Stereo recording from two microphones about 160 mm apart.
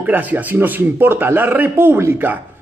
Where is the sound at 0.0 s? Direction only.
10° right (ahead or behind).